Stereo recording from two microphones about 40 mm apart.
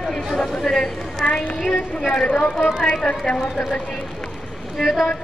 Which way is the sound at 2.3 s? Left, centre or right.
Left.